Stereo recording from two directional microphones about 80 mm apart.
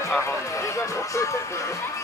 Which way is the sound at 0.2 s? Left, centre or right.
Left.